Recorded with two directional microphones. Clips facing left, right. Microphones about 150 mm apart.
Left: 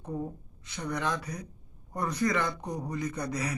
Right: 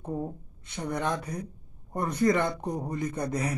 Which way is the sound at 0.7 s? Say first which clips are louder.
Right 2 dB; 25° right (ahead or behind).